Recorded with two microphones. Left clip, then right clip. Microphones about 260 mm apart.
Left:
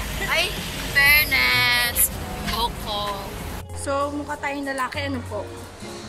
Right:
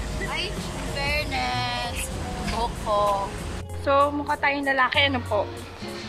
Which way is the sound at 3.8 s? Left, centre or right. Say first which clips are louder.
Right 4 dB; centre.